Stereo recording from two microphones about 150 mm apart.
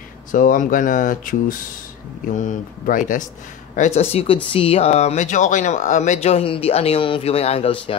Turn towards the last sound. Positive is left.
turn(degrees=40)  # may be behind; listen again after turning